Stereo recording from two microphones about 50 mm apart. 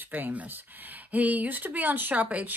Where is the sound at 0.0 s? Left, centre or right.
Right.